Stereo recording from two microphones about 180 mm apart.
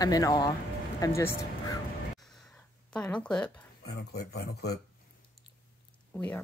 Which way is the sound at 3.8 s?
65° left (ahead or behind).